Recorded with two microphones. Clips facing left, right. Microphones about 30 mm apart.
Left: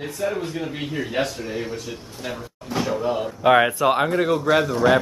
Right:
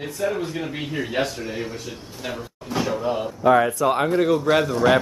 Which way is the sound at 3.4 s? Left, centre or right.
Left.